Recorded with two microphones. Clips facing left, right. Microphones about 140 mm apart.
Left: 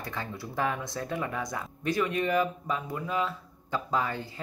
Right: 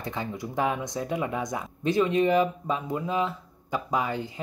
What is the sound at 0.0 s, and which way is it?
Speech, 20° right (ahead or behind).